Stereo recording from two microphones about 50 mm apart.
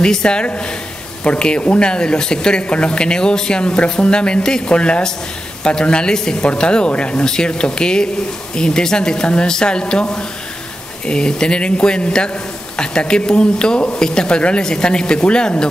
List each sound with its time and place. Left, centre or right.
0.0 s a woman's voice: centre